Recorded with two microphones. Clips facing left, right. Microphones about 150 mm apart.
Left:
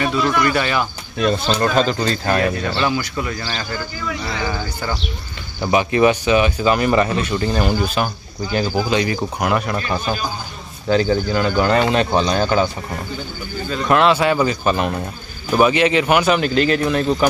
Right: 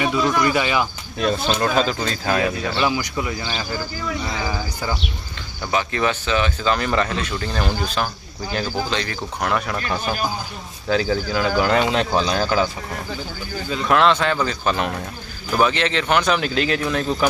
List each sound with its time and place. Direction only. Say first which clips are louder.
0.5 s speech: left 1 dB; 10° right (ahead or behind)
5.6 s speech: left 7 dB; 15° left (ahead or behind); by 12.6 s centre (ahead or behind)
13.8 s speech: left 2 dB; 5° left (ahead or behind)